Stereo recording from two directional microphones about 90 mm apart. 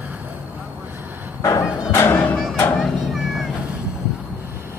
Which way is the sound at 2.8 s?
Centre (ahead or behind).